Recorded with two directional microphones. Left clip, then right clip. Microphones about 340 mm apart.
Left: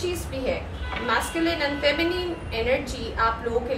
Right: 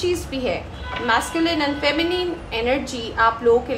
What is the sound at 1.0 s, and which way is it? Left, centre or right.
A woman's voice, right.